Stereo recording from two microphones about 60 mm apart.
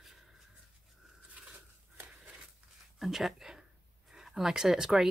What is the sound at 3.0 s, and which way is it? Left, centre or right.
Speech, centre.